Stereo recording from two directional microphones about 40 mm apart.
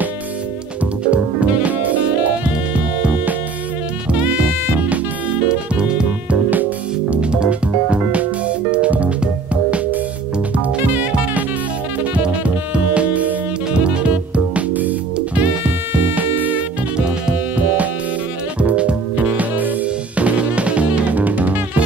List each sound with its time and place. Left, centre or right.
1.0 s music: right
5.5 s music: right
7.1 s music: right
10.9 s saxophone: right
12.1 s music: right
14.7 s music: right
15.1 s music: right
16.2 s music: right
18.6 s music: right
19.2 s music: right
20.2 s music: right